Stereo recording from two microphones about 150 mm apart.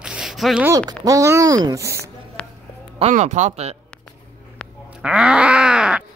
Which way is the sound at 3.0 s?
50° right (ahead or behind).